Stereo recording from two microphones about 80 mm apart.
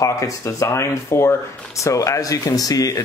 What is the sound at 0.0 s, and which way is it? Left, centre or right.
Speech, left.